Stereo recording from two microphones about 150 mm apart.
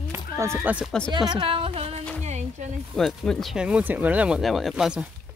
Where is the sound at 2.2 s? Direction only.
50° right (ahead or behind).